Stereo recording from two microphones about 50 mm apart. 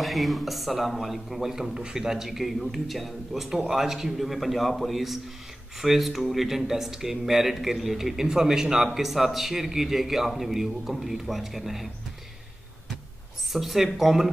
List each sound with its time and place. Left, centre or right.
0.0 s speech: centre
13.5 s speech: centre